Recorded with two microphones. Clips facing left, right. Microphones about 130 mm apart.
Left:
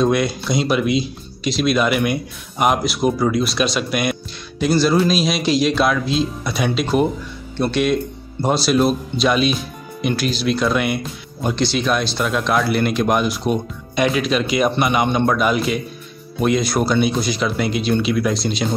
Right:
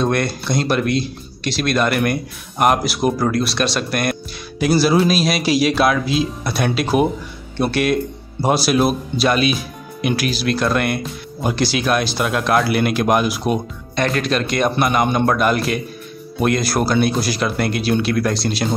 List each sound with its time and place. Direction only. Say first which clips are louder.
0.0 s speech: left 2 dB; centre (ahead or behind)